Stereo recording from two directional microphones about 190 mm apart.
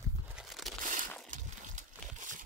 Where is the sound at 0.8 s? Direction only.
45° right (ahead or behind).